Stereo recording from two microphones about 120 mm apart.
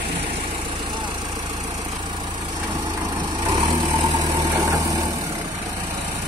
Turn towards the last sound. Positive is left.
turn(degrees=-30)  # may be behind; listen again after turning